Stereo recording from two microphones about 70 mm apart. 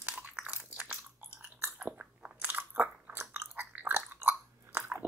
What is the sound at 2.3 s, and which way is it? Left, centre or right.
Biting, right.